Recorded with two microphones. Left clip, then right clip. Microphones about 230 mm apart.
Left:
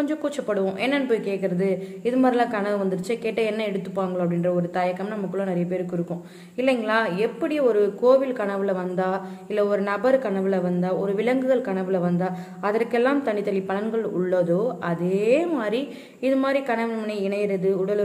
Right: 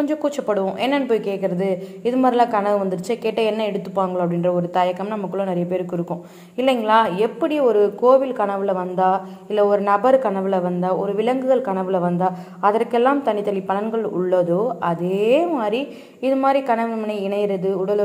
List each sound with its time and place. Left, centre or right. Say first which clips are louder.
0.0 s a woman's voice: right 5 dB; centre